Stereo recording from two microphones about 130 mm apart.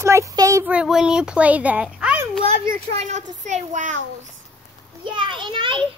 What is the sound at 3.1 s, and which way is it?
Speech, 65° right (ahead or behind).